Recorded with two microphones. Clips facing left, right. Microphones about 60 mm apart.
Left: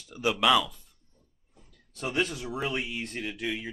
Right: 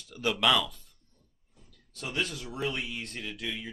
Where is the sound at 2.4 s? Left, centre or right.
Centre.